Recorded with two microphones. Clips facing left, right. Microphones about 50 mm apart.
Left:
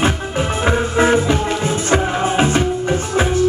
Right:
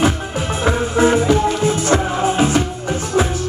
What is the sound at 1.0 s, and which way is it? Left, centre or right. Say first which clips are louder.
Music: right 2 dB; left.